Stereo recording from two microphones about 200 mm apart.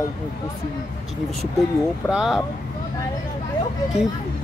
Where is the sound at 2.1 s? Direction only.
Centre (ahead or behind).